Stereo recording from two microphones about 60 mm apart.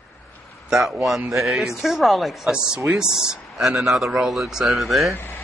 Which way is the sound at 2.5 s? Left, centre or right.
Centre.